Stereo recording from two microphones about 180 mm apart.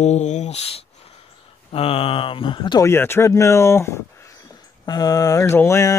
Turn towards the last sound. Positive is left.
turn(degrees=15)  # may be behind; listen again after turning